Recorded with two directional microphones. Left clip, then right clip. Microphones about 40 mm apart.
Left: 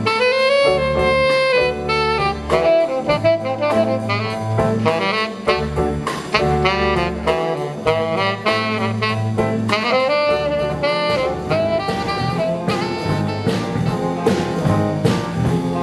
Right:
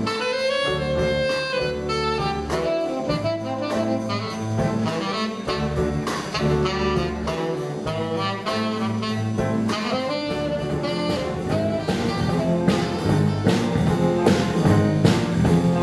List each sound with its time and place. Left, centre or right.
0.0 s saxophone: left
4.8 s saxophone: left
9.7 s saxophone: left